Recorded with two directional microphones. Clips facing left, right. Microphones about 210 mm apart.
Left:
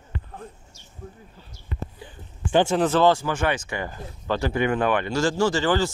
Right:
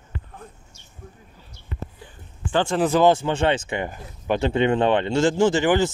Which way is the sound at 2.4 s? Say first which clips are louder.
Left 3 dB; 15° left (ahead or behind).